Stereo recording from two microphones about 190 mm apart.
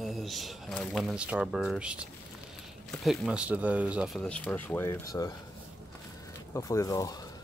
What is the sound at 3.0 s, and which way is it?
Speech, 5° right (ahead or behind).